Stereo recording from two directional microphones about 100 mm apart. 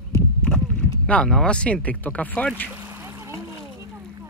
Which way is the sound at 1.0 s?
10° left (ahead or behind).